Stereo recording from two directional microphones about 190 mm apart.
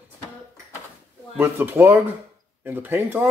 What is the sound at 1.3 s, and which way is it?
Speech, 10° right (ahead or behind).